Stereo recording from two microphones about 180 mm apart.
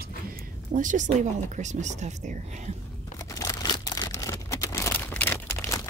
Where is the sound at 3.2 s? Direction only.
20° left (ahead or behind).